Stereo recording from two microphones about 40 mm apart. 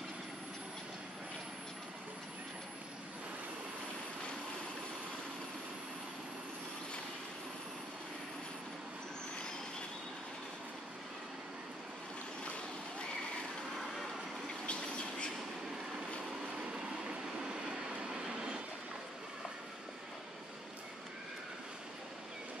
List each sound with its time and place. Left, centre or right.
14.7 s vehicle: left
16.7 s train: right
18.3 s vehicle: right